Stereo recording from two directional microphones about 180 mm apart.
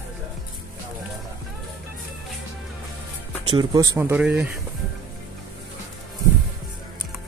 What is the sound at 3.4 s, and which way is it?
Speech, 25° right (ahead or behind).